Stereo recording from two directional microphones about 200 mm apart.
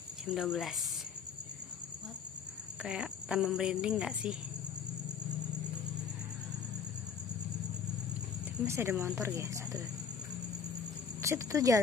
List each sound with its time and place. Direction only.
0.3 s speech: centre (ahead or behind)
2.8 s speech: 5° right (ahead or behind)
8.6 s speech: 15° right (ahead or behind)
11.1 s speech: 15° right (ahead or behind)